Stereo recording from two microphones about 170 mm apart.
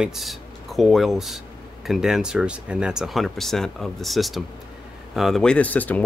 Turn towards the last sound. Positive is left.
turn(degrees=10)  # may be behind; listen again after turning